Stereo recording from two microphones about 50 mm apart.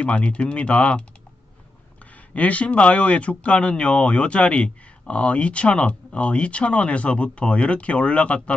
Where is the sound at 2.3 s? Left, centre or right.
Left.